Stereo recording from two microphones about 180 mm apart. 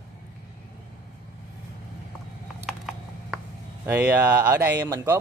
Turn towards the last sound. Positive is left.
turn(degrees=-15)  # may be behind; listen again after turning